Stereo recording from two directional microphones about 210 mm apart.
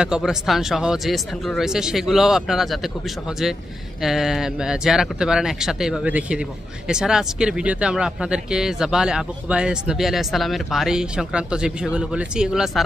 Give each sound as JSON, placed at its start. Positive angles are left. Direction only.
{"t": 0.0, "sound": "speech", "side_deg": -5}